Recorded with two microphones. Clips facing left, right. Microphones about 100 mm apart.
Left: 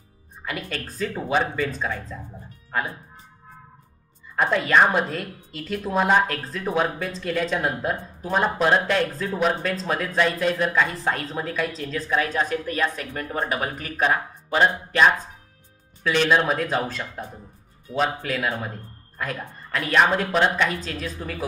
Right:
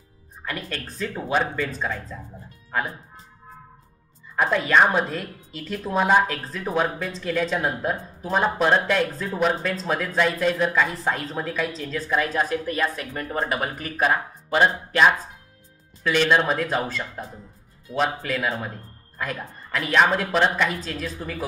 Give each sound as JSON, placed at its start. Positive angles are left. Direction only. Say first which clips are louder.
{"t": 0.5, "sound": "a woman's voice", "louder": "left 1 dB", "side_deg": 0}
{"t": 4.4, "sound": "a woman's voice", "louder": "even", "side_deg": 0}
{"t": 17.9, "sound": "speech", "louder": "even", "side_deg": -30}
{"t": 18.2, "sound": "a woman's voice", "louder": "even", "side_deg": 0}